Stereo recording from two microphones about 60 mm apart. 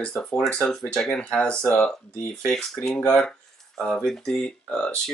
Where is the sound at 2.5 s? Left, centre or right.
Centre.